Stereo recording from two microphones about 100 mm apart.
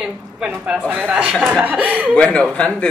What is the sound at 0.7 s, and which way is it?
Speech, 15° right (ahead or behind).